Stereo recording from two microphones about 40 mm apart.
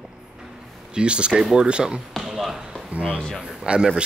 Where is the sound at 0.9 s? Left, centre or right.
Right.